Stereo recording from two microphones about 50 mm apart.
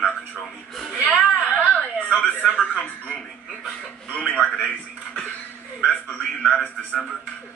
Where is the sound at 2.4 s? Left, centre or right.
Centre.